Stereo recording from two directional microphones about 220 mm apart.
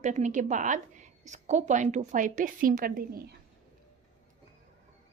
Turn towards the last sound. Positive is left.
turn(degrees=-40)  # may be behind; listen again after turning